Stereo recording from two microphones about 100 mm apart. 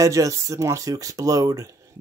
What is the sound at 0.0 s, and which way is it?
Speech, 35° right (ahead or behind).